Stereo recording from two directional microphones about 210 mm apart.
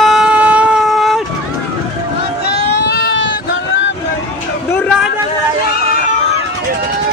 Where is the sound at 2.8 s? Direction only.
55° left (ahead or behind).